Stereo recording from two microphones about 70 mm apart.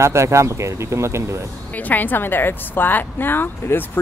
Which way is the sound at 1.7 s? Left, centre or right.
Left.